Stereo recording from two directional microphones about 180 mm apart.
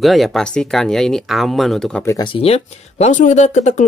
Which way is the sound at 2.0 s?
25° left (ahead or behind).